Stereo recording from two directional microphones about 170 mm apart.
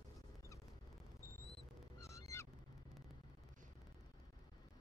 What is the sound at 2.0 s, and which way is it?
Honk, 20° left (ahead or behind).